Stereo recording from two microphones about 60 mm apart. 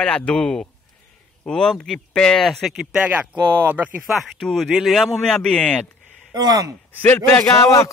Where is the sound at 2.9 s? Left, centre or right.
Right.